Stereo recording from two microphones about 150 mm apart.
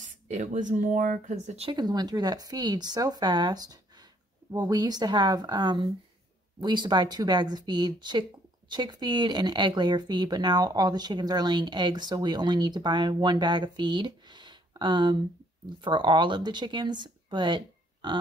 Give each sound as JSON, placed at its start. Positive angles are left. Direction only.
{"t": 0.0, "sound": "speech", "side_deg": -55}
{"t": 1.7, "sound": "speech", "side_deg": -25}